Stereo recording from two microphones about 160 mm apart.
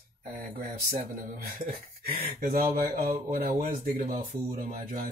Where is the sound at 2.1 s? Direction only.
65° right (ahead or behind).